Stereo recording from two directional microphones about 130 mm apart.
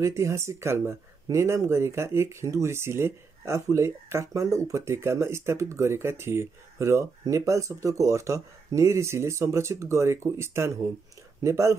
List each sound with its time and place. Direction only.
0.0 s speech: 25° right (ahead or behind)